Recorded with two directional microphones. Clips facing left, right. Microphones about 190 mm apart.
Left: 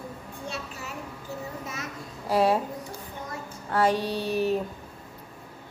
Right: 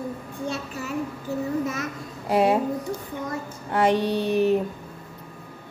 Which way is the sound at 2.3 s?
20° right (ahead or behind).